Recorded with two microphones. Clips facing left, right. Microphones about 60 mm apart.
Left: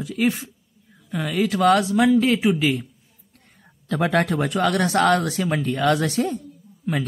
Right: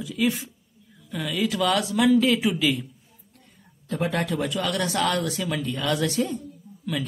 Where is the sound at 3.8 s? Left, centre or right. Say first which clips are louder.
Left 5 dB; left.